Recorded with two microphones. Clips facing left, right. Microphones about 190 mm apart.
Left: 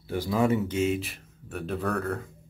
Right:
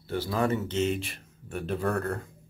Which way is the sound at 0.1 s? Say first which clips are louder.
Left 3 dB; 15° left (ahead or behind).